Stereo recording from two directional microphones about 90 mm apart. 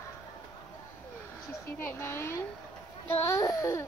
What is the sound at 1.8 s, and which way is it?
A woman's voice, 30° left (ahead or behind).